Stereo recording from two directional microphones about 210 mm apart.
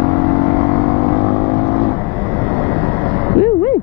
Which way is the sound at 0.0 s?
20° left (ahead or behind).